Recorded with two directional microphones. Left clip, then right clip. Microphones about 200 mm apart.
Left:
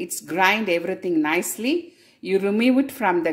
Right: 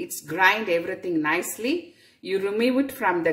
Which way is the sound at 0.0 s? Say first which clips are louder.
Even; 40° left (ahead or behind).